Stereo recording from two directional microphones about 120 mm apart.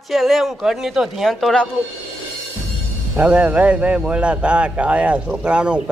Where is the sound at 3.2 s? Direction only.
10° right (ahead or behind).